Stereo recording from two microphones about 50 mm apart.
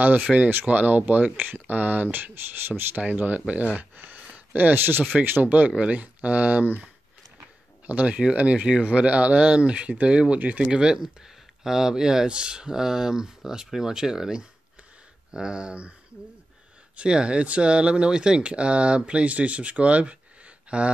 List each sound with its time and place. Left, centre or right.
0.2 s speech: right
0.7 s speech: right
3.9 s a sound: right
4.6 s speech: right
7.8 s speech: right
10.4 s speech: right
10.7 s speech: centre
16.9 s speech: centre